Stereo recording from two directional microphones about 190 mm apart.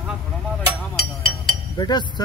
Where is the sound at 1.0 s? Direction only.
5° left (ahead or behind).